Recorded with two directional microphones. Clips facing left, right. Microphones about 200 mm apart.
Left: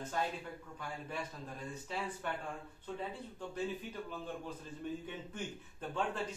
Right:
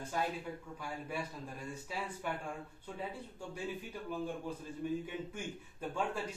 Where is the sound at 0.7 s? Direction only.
10° right (ahead or behind).